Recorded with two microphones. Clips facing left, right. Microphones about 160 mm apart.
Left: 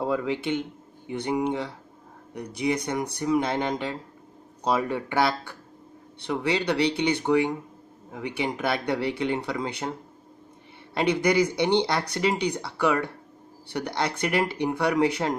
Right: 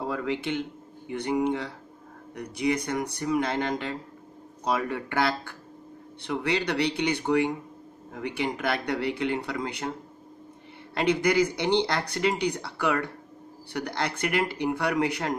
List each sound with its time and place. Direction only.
0.0 s speech: 15° left (ahead or behind)
6.5 s speech: 20° left (ahead or behind)
11.0 s speech: 20° left (ahead or behind)